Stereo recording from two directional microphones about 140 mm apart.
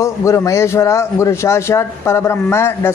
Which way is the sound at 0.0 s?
20° left (ahead or behind).